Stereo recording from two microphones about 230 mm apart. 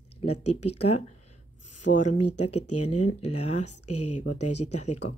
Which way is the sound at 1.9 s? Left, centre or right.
Left.